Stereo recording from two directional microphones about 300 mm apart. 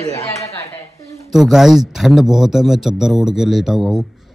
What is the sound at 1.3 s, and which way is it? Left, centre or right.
Speech, centre.